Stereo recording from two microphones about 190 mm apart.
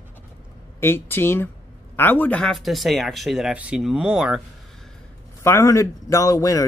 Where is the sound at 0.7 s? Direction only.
10° left (ahead or behind); by 4.4 s 5° right (ahead or behind).